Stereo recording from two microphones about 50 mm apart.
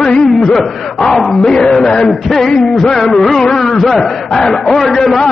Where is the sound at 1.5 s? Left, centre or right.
Centre.